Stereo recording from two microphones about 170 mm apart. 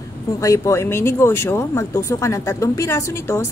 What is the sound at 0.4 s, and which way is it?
A woman's voice, 20° left (ahead or behind).